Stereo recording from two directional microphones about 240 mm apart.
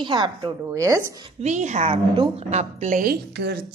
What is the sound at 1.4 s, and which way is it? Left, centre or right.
A woman's voice, right.